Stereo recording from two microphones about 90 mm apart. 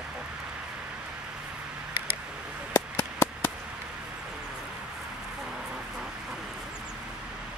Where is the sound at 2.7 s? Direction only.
35° left (ahead or behind).